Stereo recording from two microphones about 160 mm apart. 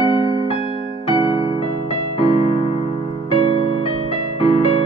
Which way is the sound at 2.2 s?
35° left (ahead or behind).